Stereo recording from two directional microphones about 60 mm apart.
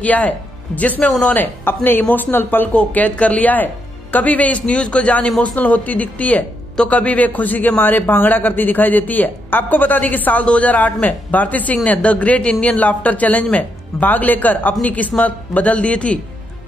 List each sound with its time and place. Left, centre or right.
0.0 s speech: left